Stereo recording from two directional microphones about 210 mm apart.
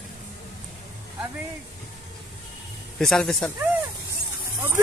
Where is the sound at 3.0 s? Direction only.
Centre (ahead or behind).